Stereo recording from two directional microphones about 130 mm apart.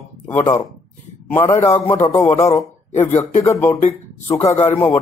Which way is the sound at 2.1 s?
55° left (ahead or behind).